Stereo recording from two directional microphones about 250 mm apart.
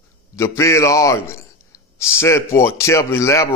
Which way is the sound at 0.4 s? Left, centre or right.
Centre.